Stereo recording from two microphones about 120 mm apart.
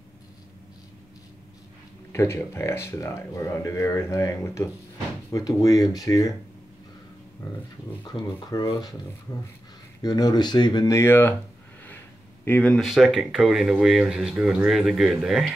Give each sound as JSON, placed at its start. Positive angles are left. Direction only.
{"t": 2.1, "sound": "speech", "side_deg": 20}
{"t": 8.0, "sound": "speech", "side_deg": 35}
{"t": 10.0, "sound": "speech", "side_deg": 35}
{"t": 11.0, "sound": "speech", "side_deg": 20}
{"t": 12.4, "sound": "speech", "side_deg": 15}
{"t": 12.7, "sound": "speech", "side_deg": 0}